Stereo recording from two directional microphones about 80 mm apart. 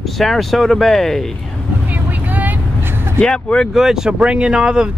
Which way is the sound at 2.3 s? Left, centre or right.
Right.